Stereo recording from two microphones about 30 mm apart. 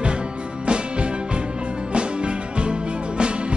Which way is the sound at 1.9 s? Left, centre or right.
Right.